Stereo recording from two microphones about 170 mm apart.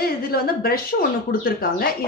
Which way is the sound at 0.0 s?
60° left (ahead or behind).